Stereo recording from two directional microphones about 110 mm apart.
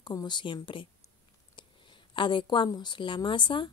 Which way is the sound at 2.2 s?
50° left (ahead or behind).